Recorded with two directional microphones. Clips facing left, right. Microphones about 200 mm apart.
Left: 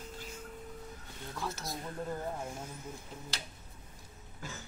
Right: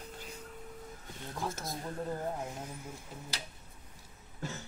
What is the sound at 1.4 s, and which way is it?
Speech, 50° right (ahead or behind).